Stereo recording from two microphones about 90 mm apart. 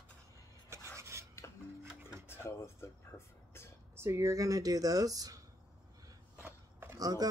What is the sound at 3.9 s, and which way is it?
Speech, 30° right (ahead or behind).